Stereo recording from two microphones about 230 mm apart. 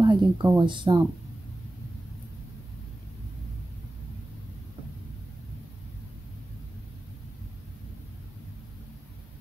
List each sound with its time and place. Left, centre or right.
0.0 s speech: centre